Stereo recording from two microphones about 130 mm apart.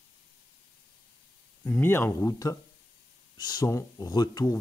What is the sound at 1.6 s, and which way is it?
Speech, 15° left (ahead or behind).